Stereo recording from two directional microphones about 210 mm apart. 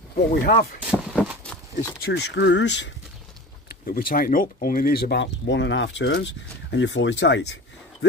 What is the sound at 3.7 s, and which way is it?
Speech, 45° left (ahead or behind).